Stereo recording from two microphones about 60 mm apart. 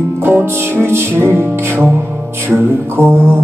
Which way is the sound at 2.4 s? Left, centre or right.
Right.